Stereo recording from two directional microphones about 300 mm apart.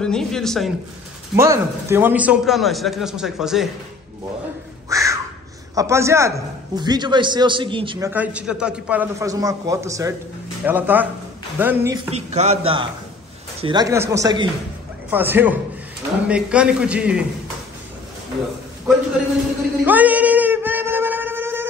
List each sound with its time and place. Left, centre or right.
0.0 s a man's voice: centre
1.3 s a man's voice: centre
4.8 s crow: centre
5.8 s a man's voice: centre
8.1 s a man's voice: centre
12.1 s a man's voice: right; by 17.3 s centre
19.8 s a sound: centre